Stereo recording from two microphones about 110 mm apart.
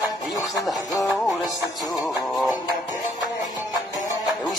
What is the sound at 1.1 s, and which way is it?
Music, centre (ahead or behind).